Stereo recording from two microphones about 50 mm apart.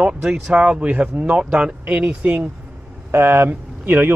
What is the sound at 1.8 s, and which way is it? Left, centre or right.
Speech, right.